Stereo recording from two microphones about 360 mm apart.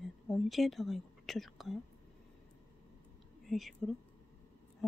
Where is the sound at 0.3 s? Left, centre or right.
Centre.